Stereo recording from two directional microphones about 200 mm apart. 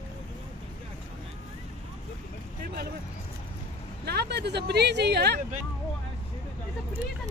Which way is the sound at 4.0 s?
55° right (ahead or behind).